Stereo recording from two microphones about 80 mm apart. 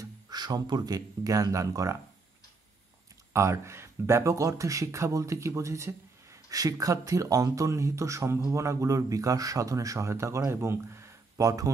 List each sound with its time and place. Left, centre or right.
0.3 s speech: right
3.3 s speech: right